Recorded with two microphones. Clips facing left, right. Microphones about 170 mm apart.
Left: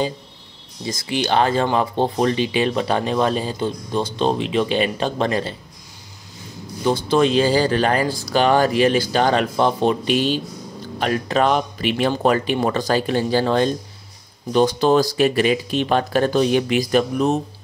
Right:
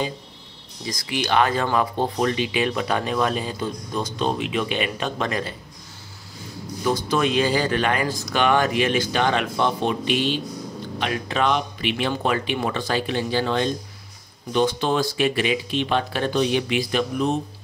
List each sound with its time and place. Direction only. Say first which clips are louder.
0.8 s speech: left 4 dB; 25° left (ahead or behind)
6.8 s speech: left 5 dB; 30° left (ahead or behind)